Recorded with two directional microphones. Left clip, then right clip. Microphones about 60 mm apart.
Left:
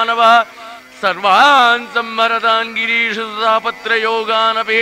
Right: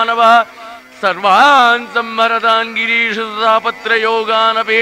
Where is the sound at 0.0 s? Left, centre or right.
Right.